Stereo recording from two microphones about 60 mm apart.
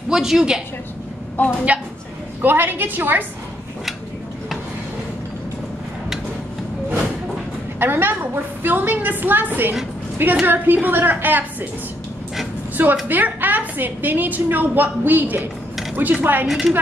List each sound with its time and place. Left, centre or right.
0.1 s a woman's voice: centre
1.3 s a woman's voice: left
2.4 s a woman's voice: right
7.8 s a woman's voice: right
12.8 s a woman's voice: right
16.4 s a woman's voice: centre